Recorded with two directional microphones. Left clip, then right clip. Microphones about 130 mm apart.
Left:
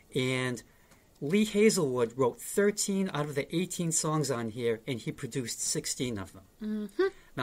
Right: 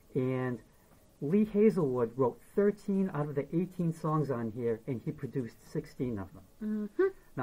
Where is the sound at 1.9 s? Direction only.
20° left (ahead or behind).